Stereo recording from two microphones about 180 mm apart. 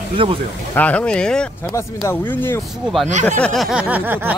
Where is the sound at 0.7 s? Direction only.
10° left (ahead or behind).